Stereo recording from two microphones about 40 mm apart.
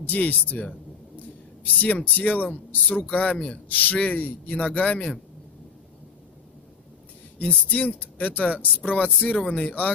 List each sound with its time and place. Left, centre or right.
0.0 s speech: left
1.1 s a sound: left
2.1 s a man's voice: left
7.3 s a man's voice: left